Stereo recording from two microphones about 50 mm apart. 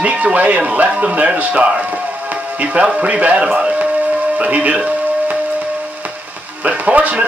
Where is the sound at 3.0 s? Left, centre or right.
Right.